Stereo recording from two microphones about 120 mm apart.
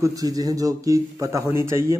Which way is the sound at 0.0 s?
30° right (ahead or behind).